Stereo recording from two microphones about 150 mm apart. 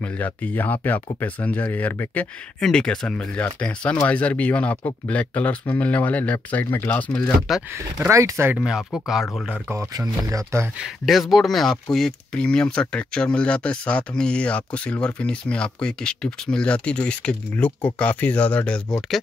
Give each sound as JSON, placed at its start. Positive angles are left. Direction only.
{"t": 0.0, "sound": "speech", "side_deg": 10}
{"t": 7.7, "sound": "speech", "side_deg": -20}
{"t": 8.5, "sound": "speech", "side_deg": -5}
{"t": 9.7, "sound": "speech", "side_deg": -20}
{"t": 10.8, "sound": "speech", "side_deg": 0}